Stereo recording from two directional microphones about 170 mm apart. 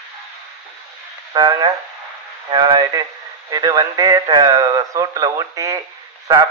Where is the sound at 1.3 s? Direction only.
25° right (ahead or behind).